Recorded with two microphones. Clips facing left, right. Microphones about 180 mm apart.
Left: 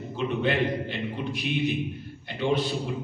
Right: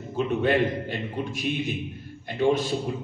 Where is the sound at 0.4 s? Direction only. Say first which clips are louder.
Right 2 dB; 45° right (ahead or behind).